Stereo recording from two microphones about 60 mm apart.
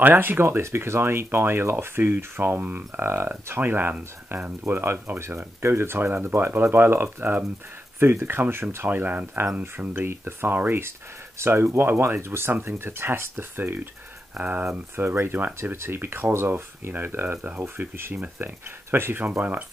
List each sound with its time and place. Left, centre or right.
0.0 s speech: right
5.2 s speech: right
11.3 s speech: right
14.3 s speech: right
14.6 s speech: right
15.4 s speech: right